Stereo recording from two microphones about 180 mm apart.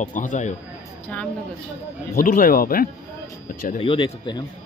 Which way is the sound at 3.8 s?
30° left (ahead or behind).